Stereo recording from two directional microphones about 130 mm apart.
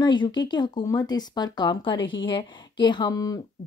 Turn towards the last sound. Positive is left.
turn(degrees=30)  # may be behind; listen again after turning